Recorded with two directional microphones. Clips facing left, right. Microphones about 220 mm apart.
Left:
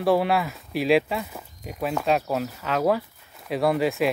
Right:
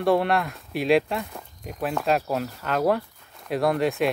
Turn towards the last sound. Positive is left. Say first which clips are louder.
# even
turn(degrees=0)  # may be behind; listen again after turning